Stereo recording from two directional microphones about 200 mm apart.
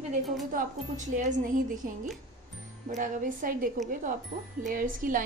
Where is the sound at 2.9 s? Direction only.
40° right (ahead or behind).